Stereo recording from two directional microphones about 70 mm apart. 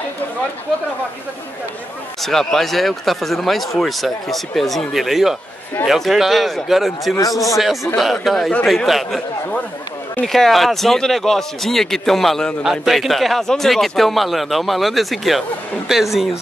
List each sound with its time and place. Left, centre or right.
2.2 s speech: centre
7.2 s a man's voice: left
7.5 s speech: centre
10.2 s speech: centre